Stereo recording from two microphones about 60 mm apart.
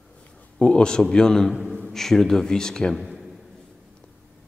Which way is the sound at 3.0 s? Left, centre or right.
Centre.